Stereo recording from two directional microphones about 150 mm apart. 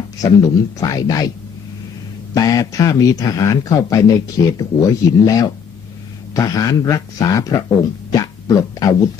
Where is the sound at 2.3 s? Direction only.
25° left (ahead or behind).